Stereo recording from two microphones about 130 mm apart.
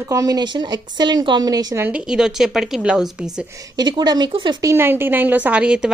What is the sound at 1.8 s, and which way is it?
A woman's voice, 10° right (ahead or behind).